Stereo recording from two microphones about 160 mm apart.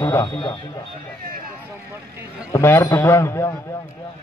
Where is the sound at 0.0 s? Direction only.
20° left (ahead or behind).